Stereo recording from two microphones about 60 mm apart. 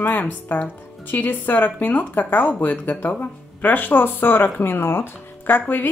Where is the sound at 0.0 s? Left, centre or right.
Left.